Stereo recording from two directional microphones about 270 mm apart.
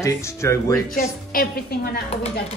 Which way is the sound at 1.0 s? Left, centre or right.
Left.